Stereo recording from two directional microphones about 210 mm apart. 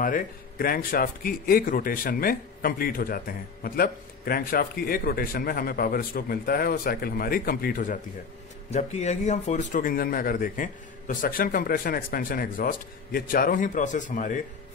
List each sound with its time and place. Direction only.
0.0 s a man's voice: 45° left (ahead or behind)